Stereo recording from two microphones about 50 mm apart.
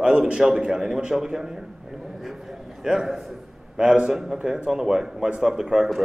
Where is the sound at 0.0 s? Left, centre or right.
Centre.